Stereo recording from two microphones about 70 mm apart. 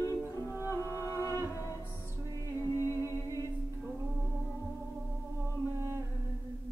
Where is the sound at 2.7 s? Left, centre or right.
Left.